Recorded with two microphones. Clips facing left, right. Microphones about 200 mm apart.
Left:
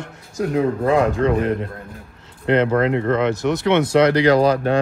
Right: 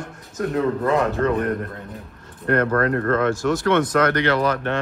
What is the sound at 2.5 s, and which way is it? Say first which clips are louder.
Speech: left 3 dB; 20° left (ahead or behind).